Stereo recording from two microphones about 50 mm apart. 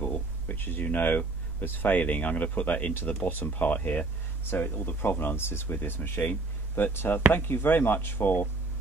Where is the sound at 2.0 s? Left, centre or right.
Left.